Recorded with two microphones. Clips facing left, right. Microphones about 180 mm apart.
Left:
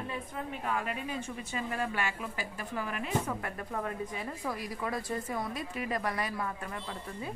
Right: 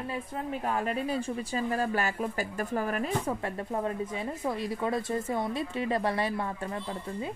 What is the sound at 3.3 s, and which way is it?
Speech, 25° right (ahead or behind).